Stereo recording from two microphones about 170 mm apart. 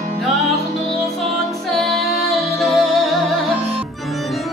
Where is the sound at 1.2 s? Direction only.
Centre (ahead or behind).